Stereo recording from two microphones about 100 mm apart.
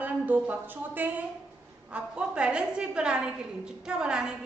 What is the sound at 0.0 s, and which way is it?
A woman's voice, 20° right (ahead or behind).